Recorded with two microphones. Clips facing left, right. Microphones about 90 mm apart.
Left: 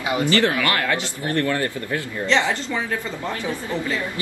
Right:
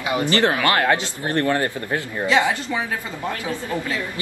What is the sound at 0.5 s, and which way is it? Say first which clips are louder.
Speech: right 3 dB; 40° right (ahead or behind).